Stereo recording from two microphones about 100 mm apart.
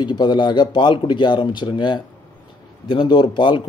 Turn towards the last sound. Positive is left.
turn(degrees=50)  # may be behind; listen again after turning